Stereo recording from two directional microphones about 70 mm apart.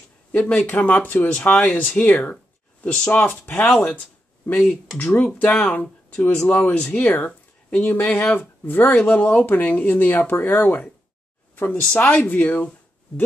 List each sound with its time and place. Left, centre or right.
0.3 s speech: left
1.5 s speech: centre